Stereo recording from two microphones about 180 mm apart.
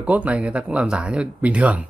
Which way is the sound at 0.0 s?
10° right (ahead or behind).